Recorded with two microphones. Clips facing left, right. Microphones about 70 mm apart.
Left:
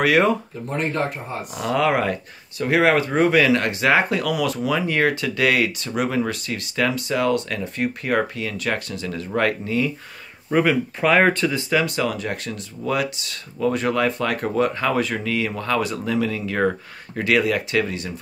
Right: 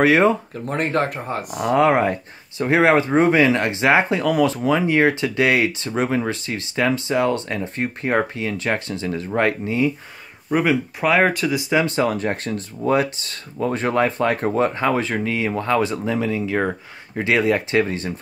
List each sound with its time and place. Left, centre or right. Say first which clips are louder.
0.0 s speech: right 3 dB; right
0.7 s speech: right 3 dB; right
1.6 s speech: right 4 dB; right
10.5 s speech: even; centre
11.7 s speech: right 4 dB; right